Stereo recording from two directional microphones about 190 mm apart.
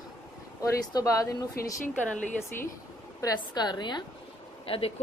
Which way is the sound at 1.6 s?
50° left (ahead or behind).